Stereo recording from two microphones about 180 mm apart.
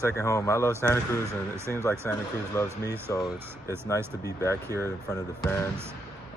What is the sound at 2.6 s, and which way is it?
Speech, 15° right (ahead or behind).